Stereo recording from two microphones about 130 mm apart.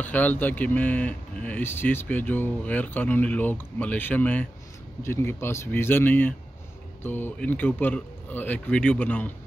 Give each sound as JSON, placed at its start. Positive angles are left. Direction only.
{"t": 0.0, "sound": "speech", "side_deg": 15}